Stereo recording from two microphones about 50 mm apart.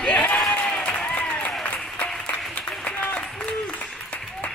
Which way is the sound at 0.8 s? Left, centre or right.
Left.